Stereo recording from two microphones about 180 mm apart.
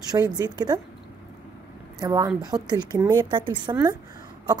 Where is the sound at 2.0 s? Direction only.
20° right (ahead or behind).